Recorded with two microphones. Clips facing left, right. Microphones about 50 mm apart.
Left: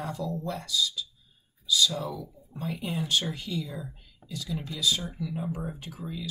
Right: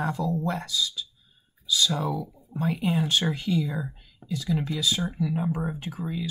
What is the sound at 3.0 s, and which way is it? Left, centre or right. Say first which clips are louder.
Speech: right 4 dB; right.